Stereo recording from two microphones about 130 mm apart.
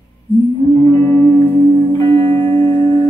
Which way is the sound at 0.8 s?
30° left (ahead or behind).